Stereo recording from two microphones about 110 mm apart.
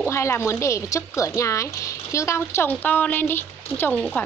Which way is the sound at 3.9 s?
5° left (ahead or behind).